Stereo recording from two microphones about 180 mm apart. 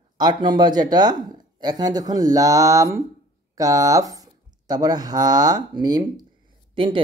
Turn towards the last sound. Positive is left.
turn(degrees=-30)  # may be behind; listen again after turning